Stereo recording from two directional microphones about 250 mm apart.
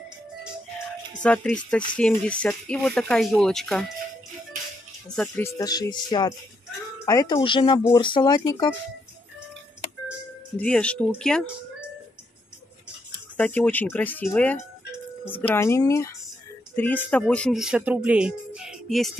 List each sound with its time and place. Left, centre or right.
1.2 s speech: centre
5.0 s speech: centre
10.6 s speech: centre
13.4 s speech: centre